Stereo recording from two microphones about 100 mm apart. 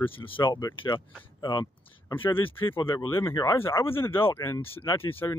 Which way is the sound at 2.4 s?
60° left (ahead or behind).